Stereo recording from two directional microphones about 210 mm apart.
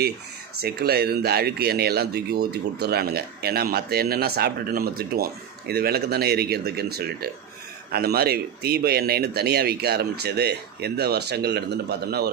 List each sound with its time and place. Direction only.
0.6 s speech: 50° right (ahead or behind)